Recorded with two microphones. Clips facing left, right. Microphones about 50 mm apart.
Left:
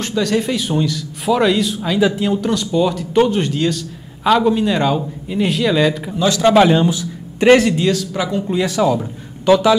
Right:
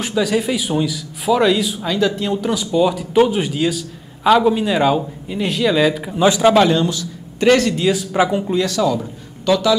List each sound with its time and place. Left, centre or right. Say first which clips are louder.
0.0 s a man's voice: even; centre
6.1 s a man's voice: right 2 dB; centre
6.5 s a man's voice: left 2 dB; centre
7.9 s speech: right 3 dB; centre
8.5 s a man's voice: left 3 dB; centre